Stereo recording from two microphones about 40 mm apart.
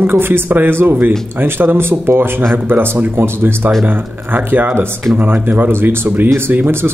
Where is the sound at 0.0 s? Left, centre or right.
Right.